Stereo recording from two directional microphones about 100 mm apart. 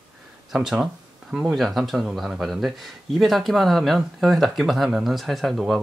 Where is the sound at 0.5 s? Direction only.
5° right (ahead or behind).